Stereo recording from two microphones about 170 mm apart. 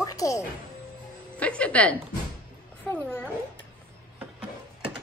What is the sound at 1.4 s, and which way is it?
Speech, 10° left (ahead or behind).